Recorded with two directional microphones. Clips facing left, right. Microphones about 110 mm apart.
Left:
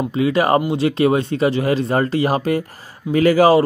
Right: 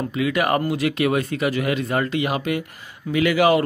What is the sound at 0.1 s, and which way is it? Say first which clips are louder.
Speech: left 5 dB; 30° left (ahead or behind).